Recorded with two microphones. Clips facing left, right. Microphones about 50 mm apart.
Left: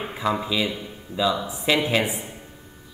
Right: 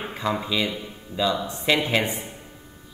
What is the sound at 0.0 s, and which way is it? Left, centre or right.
Speech, centre.